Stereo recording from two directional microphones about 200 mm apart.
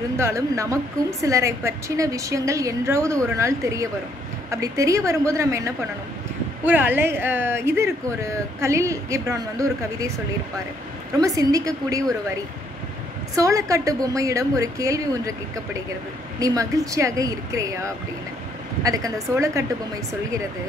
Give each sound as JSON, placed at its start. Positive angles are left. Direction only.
{"t": 0.2, "sound": "speech", "side_deg": -15}
{"t": 11.1, "sound": "speech", "side_deg": -15}
{"t": 13.4, "sound": "speech", "side_deg": -15}